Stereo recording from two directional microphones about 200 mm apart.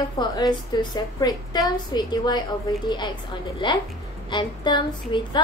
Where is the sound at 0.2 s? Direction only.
20° left (ahead or behind).